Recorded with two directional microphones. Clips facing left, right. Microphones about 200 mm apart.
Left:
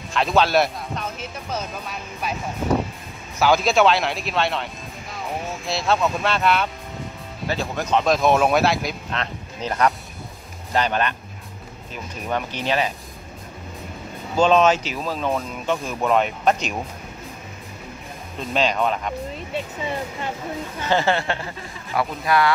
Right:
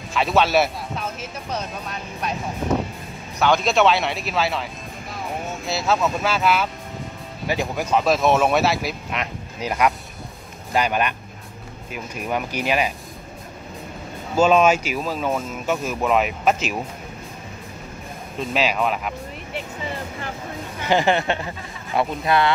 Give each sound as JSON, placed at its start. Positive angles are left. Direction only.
{"t": 0.1, "sound": "speech", "side_deg": 0}
{"t": 3.3, "sound": "speech", "side_deg": 5}
{"t": 5.7, "sound": "speech", "side_deg": 0}
{"t": 14.3, "sound": "speech", "side_deg": -10}
{"t": 18.5, "sound": "speech", "side_deg": -5}
{"t": 20.8, "sound": "speech", "side_deg": -15}